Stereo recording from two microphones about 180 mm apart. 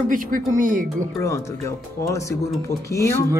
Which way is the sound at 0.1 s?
50° right (ahead or behind).